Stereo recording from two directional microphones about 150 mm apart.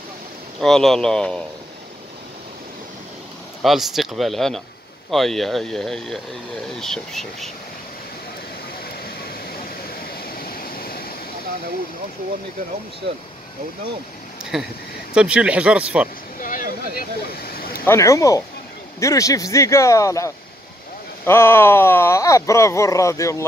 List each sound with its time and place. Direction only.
0.6 s speech: 5° left (ahead or behind)
3.6 s speech: centre (ahead or behind)
9.0 s waterfall: 85° left
14.4 s speech: 5° right (ahead or behind)
16.3 s a sound: 65° left (ahead or behind)
17.5 s vehicle: 80° left
17.8 s speech: 20° left (ahead or behind)